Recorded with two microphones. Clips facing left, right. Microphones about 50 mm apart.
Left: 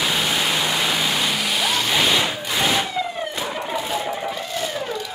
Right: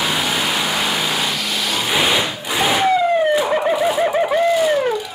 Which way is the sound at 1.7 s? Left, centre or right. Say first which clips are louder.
Right 3 dB; centre.